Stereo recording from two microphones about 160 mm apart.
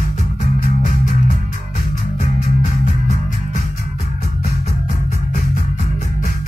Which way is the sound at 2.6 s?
50° left (ahead or behind).